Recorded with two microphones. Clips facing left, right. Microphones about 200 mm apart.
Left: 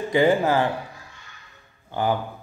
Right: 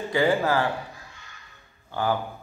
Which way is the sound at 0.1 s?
20° left (ahead or behind).